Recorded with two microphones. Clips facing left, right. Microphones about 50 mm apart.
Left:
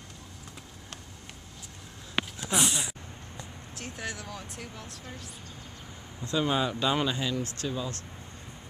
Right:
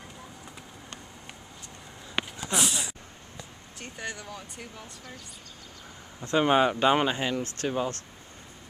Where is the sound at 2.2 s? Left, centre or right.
Centre.